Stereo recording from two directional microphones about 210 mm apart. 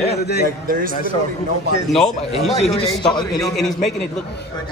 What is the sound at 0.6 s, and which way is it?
Speech, 40° right (ahead or behind).